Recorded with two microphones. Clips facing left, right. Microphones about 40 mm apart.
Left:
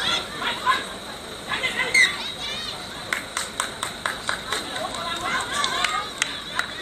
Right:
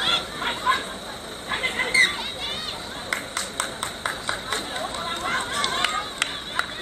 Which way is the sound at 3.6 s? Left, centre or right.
Centre.